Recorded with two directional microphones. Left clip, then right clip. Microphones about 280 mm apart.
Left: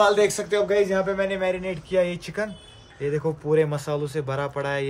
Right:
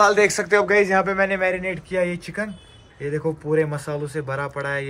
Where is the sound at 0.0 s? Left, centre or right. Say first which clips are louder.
Right 3 dB; centre.